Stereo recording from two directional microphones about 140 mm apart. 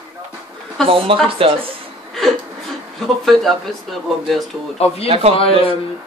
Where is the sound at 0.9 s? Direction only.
40° right (ahead or behind).